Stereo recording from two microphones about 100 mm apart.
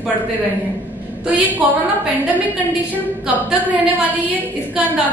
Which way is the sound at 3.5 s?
15° right (ahead or behind).